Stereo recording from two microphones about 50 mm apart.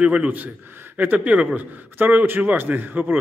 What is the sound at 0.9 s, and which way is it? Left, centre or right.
Speech, right.